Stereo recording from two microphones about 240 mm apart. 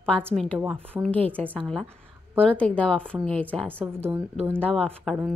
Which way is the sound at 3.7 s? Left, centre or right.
Centre.